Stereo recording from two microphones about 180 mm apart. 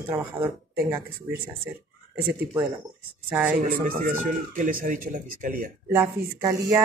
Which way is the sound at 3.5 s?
55° right (ahead or behind).